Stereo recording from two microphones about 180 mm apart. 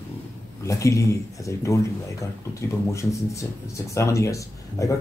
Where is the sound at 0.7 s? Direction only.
15° left (ahead or behind).